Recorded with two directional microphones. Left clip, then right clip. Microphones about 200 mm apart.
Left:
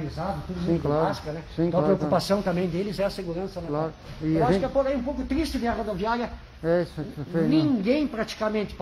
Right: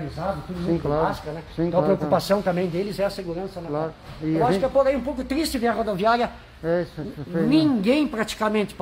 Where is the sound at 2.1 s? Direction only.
10° right (ahead or behind).